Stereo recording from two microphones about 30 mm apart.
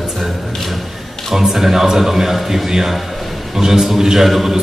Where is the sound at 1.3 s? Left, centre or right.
Centre.